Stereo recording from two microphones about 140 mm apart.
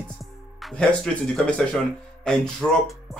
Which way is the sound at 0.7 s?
5° left (ahead or behind).